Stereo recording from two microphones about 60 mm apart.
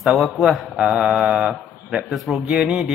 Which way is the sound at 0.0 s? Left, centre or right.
Centre.